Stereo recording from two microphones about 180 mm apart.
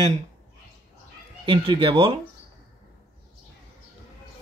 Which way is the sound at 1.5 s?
30° right (ahead or behind).